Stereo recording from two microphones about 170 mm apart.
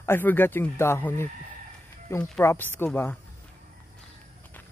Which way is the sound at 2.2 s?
10° left (ahead or behind).